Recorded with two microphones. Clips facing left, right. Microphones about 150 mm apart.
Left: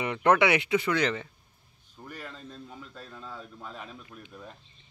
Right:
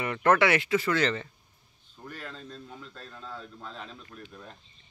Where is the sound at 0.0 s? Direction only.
15° left (ahead or behind).